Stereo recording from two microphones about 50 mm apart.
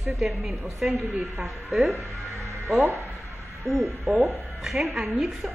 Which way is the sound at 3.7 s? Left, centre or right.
Right.